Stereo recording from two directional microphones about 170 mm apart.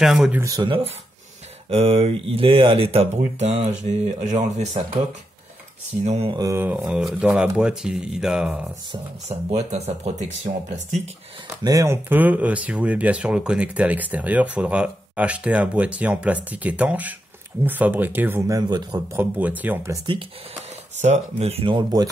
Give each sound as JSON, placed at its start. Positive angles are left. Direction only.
{"t": 0.0, "sound": "speech", "side_deg": -5}
{"t": 0.4, "sound": "a man's voice", "side_deg": -20}
{"t": 1.7, "sound": "speech", "side_deg": -35}
{"t": 5.9, "sound": "speech", "side_deg": -5}
{"t": 6.3, "sound": "speech", "side_deg": -20}
{"t": 8.9, "sound": "speech", "side_deg": -40}
{"t": 11.6, "sound": "speech", "side_deg": -20}
{"t": 18.6, "sound": "a man's voice", "side_deg": -25}
{"t": 19.1, "sound": "speech", "side_deg": -10}
{"t": 21.0, "sound": "speech", "side_deg": -40}